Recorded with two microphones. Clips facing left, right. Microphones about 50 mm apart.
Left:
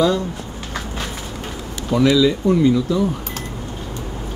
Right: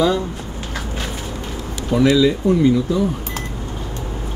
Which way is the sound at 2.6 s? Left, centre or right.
Centre.